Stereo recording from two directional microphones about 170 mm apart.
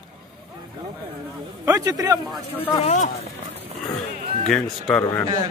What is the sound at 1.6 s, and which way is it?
Speech, 20° right (ahead or behind).